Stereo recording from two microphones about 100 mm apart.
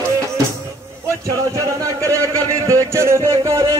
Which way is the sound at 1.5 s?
30° right (ahead or behind).